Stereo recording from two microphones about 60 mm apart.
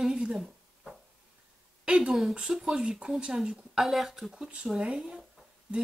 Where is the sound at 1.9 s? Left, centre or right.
Centre.